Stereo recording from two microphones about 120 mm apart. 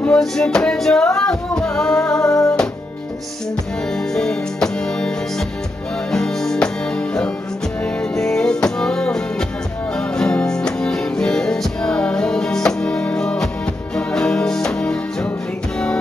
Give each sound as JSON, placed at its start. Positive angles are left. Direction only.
{"t": 0.0, "sound": "music", "side_deg": 5}
{"t": 2.2, "sound": "music", "side_deg": 25}
{"t": 4.1, "sound": "music", "side_deg": 5}
{"t": 6.1, "sound": "music", "side_deg": 5}
{"t": 7.8, "sound": "music", "side_deg": 5}